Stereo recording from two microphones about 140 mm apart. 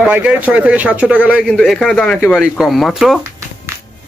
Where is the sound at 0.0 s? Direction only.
10° right (ahead or behind).